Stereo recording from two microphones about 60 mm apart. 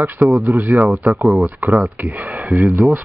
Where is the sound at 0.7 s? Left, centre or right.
Right.